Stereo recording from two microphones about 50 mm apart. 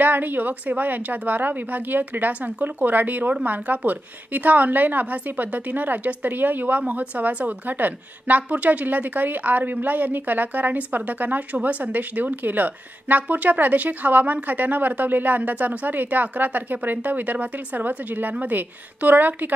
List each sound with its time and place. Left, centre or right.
0.0 s a woman's voice: right